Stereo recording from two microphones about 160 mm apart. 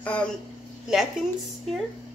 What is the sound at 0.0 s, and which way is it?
Speech, 5° left (ahead or behind).